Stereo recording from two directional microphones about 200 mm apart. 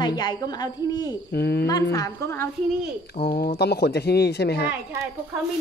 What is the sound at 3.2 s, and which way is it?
Speech, 35° left (ahead or behind).